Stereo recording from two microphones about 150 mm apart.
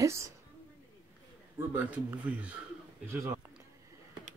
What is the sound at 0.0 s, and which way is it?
Speech, 20° right (ahead or behind).